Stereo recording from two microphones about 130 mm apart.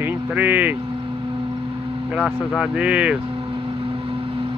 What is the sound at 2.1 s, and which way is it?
Speech, 5° right (ahead or behind).